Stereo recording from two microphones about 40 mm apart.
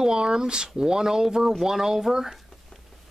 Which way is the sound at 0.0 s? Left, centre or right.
Centre.